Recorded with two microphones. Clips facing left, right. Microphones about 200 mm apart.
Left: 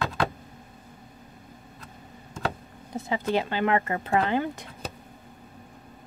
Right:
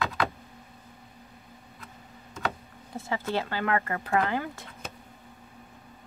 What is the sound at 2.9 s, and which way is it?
Speech, 15° left (ahead or behind).